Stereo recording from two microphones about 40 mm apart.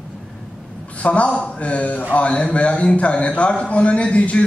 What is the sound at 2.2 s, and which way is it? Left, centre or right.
Speech, left.